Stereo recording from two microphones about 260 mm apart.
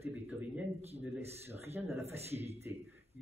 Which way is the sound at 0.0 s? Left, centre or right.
Centre.